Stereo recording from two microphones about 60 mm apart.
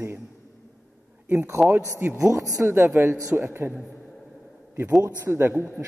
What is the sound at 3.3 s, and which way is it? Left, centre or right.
Speech, right.